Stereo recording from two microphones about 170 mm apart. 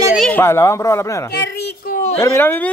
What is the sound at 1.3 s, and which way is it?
Speech, 80° left.